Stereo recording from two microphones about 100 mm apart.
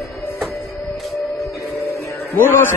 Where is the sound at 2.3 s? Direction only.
20° left (ahead or behind).